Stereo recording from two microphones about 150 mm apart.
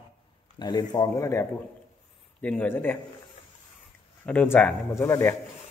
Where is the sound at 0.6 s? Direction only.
30° left (ahead or behind); by 3.0 s 10° left (ahead or behind).